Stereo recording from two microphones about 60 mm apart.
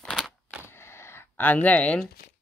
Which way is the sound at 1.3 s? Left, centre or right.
Left.